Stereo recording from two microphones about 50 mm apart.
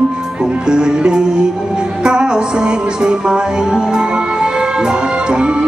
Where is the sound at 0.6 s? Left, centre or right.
Centre.